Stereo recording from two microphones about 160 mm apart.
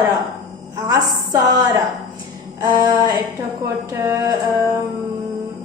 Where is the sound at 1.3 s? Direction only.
25° right (ahead or behind).